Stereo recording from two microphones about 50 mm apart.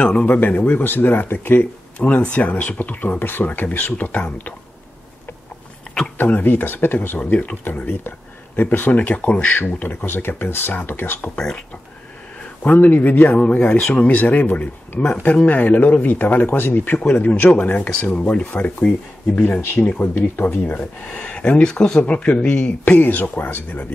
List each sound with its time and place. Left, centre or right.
0.2 s speech: left
6.1 s speech: left
7.2 s speech: left
9.6 s speech: left
11.3 s speech: centre
12.6 s speech: left
16.4 s speech: left
16.7 s speech: left
20.2 s speech: left
20.7 s speech: left
22.0 s speech: left
22.8 s speech: left